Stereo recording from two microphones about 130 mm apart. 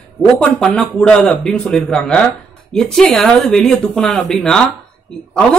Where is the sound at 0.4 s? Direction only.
5° left (ahead or behind).